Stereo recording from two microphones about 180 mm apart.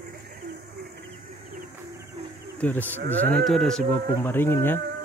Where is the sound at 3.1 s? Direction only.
10° left (ahead or behind).